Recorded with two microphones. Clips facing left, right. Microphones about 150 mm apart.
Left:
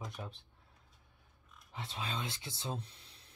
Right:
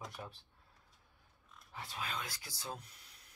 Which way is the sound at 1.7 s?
25° left (ahead or behind).